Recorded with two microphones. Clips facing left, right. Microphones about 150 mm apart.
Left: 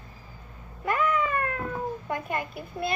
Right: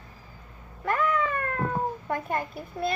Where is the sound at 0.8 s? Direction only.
15° left (ahead or behind).